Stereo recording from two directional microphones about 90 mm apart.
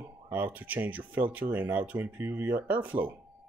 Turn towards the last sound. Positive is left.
turn(degrees=-20)  # may be behind; listen again after turning